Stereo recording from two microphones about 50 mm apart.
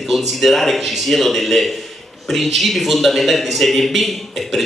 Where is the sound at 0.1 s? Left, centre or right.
Centre.